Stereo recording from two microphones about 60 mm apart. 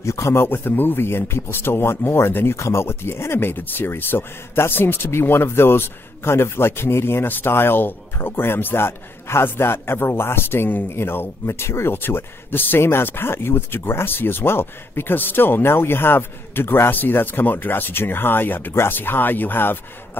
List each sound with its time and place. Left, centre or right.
0.0 s speech: left